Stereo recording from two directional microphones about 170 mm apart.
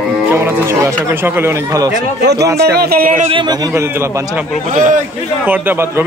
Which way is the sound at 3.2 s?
30° right (ahead or behind).